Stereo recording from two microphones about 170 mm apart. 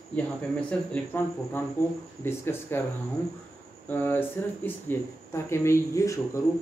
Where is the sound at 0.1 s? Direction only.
10° left (ahead or behind).